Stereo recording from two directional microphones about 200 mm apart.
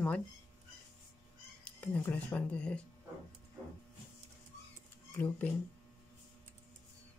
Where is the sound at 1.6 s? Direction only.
5° left (ahead or behind).